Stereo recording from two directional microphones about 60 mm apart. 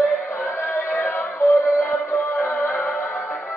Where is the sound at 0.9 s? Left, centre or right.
Left.